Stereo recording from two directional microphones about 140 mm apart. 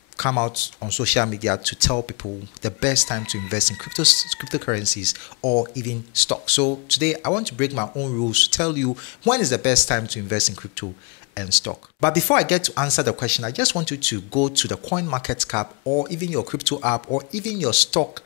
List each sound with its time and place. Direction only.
0.2 s speech: 15° left (ahead or behind)
5.4 s speech: 20° left (ahead or behind)
6.1 s speech: 5° left (ahead or behind)
8.3 s speech: 10° left (ahead or behind)
15.6 s speech: 20° left (ahead or behind)